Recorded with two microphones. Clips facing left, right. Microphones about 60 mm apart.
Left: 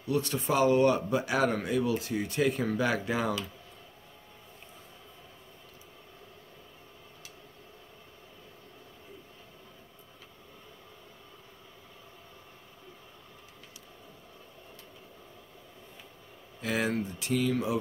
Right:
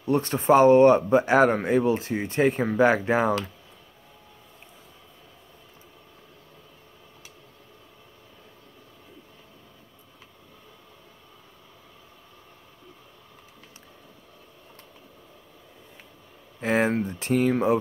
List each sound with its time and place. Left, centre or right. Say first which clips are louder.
0.0 s speech: right 6 dB; right
16.6 s speech: right 7 dB; right